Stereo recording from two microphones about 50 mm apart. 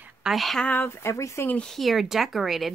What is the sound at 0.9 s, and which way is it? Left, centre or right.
Speech, left.